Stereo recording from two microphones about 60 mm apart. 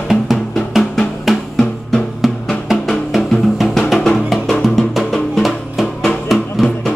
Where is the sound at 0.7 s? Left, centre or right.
Centre.